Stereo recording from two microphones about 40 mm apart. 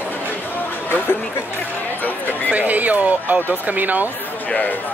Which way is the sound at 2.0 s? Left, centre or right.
Left.